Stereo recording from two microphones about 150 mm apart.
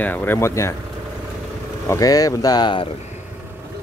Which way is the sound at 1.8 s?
20° left (ahead or behind).